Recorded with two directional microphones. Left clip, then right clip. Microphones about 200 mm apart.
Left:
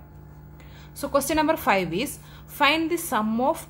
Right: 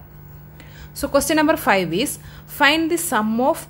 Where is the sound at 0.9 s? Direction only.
15° right (ahead or behind).